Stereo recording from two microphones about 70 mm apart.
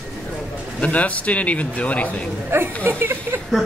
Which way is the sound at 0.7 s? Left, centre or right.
Centre.